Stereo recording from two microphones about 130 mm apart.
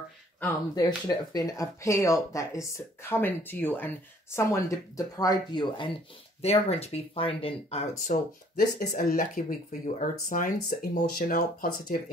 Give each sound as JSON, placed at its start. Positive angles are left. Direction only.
{"t": 0.7, "sound": "speech", "side_deg": 30}
{"t": 6.4, "sound": "speech", "side_deg": 55}
{"t": 8.1, "sound": "speech", "side_deg": 75}
{"t": 8.9, "sound": "speech", "side_deg": 90}